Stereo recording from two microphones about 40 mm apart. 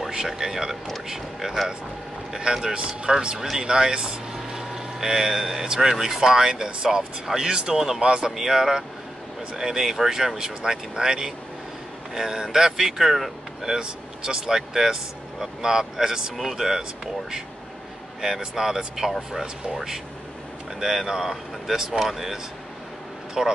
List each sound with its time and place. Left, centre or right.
0.1 s speech: centre
8.0 s speech: centre